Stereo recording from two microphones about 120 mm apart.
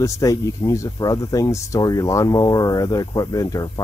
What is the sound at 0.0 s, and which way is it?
Speech, 25° left (ahead or behind).